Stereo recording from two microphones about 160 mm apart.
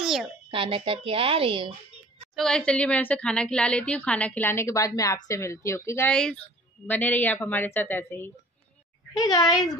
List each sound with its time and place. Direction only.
0.0 s a sound: 5° right (ahead or behind)
0.5 s a woman's voice: 35° right (ahead or behind)
2.3 s a woman's voice: 5° left (ahead or behind); by 9.8 s 25° left (ahead or behind)